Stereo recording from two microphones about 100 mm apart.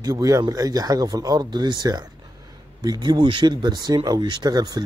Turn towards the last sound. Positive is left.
turn(degrees=-40)  # may be behind; listen again after turning